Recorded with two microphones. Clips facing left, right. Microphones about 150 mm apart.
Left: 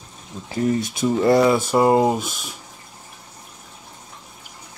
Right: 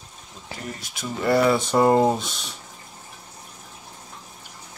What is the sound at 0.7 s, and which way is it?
Speech, 25° left (ahead or behind).